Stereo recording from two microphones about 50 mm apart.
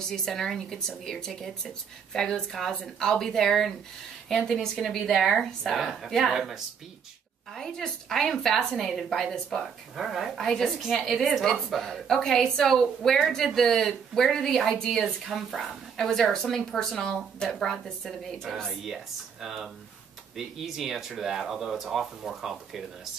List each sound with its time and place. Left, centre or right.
0.1 s speech: centre
4.8 s a woman's voice: centre
7.5 s a woman's voice: centre
9.9 s a woman's voice: centre
10.3 s a woman's voice: centre
19.4 s a woman's voice: centre